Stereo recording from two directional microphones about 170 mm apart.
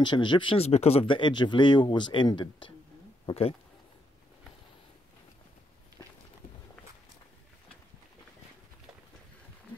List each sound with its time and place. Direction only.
0.0 s speech: 25° left (ahead or behind)